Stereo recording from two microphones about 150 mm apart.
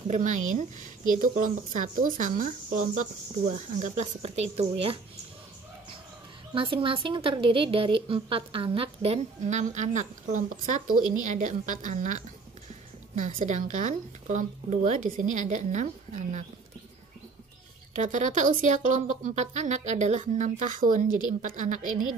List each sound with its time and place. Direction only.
0.1 s speech: 55° right (ahead or behind)
6.5 s a woman's voice: 35° right (ahead or behind)
17.9 s speech: 55° right (ahead or behind)